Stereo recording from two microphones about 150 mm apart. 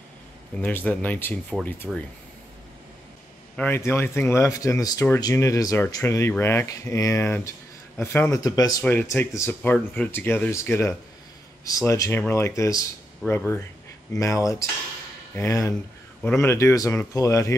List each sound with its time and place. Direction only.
0.6 s speech: 10° left (ahead or behind)
3.5 s speech: 15° left (ahead or behind)
8.4 s speech: 25° left (ahead or behind)
8.8 s speech: 15° left (ahead or behind)
13.2 s speech: centre (ahead or behind)
14.1 s speech: 20° left (ahead or behind)